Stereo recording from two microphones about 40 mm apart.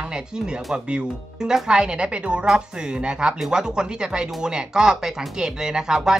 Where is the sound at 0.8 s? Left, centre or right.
Right.